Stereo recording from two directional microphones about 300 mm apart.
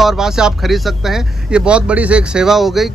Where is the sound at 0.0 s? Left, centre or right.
Centre.